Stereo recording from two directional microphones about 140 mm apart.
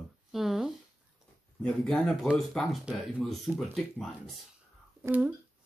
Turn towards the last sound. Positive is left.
turn(degrees=-10)  # may be behind; listen again after turning